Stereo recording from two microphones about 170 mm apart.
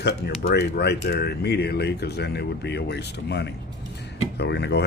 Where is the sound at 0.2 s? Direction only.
70° left (ahead or behind).